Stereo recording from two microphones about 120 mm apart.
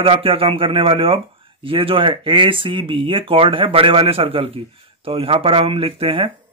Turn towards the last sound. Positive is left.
turn(degrees=-50)  # may be behind; listen again after turning